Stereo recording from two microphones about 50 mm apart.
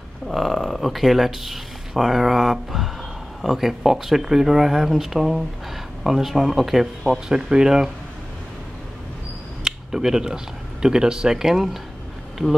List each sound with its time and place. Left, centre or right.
0.3 s speech: centre
9.7 s speech: centre